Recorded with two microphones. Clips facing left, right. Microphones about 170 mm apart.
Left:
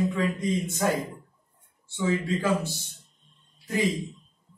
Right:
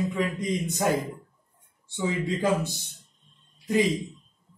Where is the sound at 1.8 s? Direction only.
15° right (ahead or behind).